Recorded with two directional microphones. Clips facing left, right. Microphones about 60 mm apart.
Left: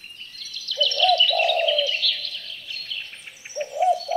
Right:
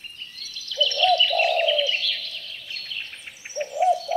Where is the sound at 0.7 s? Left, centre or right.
Right.